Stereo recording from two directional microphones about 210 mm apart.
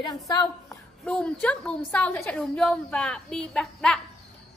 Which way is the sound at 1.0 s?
5° left (ahead or behind).